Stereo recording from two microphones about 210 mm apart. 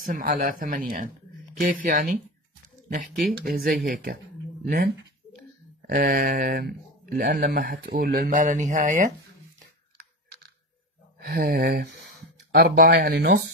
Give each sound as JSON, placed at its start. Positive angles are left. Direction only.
{"t": 0.0, "sound": "speech", "side_deg": -40}
{"t": 5.9, "sound": "speech", "side_deg": -45}
{"t": 11.1, "sound": "speech", "side_deg": -45}